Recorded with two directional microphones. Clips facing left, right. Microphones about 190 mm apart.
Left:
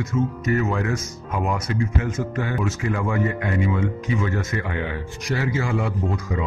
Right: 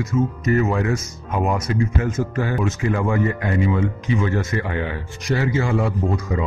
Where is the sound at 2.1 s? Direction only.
35° right (ahead or behind).